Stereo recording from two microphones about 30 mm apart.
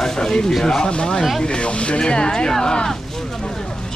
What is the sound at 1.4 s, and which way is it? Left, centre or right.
Speech, left.